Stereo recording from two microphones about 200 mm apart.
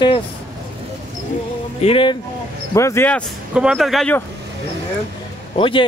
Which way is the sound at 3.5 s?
5° right (ahead or behind).